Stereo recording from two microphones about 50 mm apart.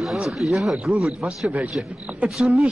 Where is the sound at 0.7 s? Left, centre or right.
Centre.